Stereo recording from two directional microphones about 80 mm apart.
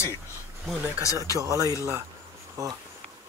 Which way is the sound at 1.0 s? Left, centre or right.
Left.